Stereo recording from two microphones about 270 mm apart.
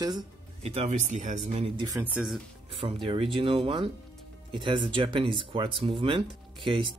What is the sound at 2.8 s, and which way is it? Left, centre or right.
Speech, right.